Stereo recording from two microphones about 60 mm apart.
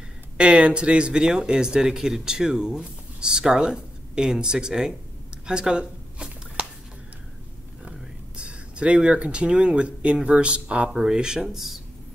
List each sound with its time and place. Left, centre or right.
0.4 s speech: centre
5.5 s a sound: centre
8.4 s speech: centre